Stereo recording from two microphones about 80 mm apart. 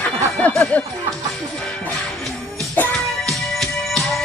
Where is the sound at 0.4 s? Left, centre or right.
Centre.